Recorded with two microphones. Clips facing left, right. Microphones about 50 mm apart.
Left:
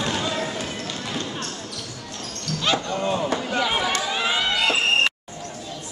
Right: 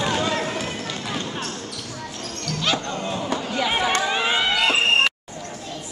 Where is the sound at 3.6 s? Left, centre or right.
Centre.